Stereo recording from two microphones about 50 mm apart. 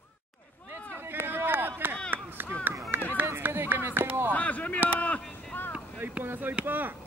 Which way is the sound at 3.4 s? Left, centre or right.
Right.